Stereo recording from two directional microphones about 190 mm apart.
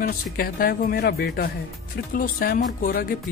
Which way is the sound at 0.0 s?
50° left (ahead or behind).